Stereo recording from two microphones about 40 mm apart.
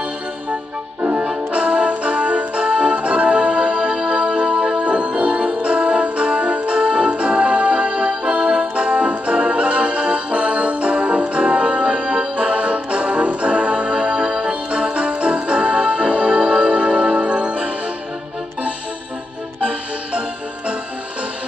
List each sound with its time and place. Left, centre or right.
1.5 s music: right
19.6 s music: right